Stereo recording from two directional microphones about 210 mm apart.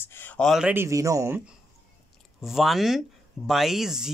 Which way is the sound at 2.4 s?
Centre (ahead or behind).